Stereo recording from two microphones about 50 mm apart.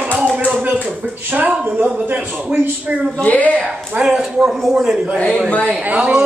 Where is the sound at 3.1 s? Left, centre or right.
Left.